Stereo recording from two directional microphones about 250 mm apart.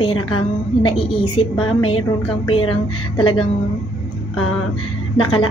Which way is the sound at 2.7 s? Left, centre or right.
Centre.